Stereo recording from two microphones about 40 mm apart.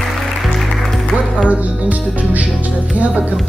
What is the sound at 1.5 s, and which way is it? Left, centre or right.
Music, right.